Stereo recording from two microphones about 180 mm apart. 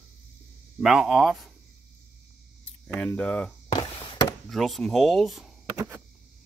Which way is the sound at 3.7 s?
30° left (ahead or behind).